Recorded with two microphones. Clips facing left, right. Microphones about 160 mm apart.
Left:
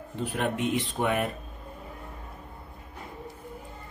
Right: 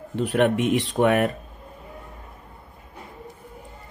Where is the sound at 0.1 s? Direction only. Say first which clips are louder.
Right 9 dB; 75° right (ahead or behind).